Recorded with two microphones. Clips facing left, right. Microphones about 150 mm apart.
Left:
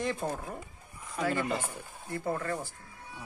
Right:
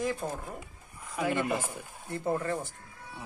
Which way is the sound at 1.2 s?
15° right (ahead or behind).